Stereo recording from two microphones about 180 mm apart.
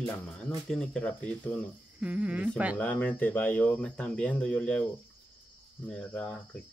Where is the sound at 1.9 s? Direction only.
5° right (ahead or behind).